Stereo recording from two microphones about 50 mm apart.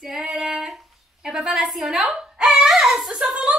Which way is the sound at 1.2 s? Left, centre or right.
Centre.